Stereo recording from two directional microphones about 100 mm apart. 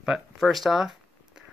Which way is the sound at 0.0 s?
5° right (ahead or behind).